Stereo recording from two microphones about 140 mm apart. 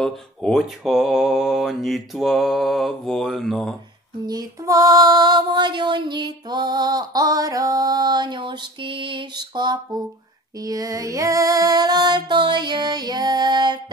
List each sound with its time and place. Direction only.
0.0 s mantra: 5° left (ahead or behind)
4.3 s female singing: 25° right (ahead or behind)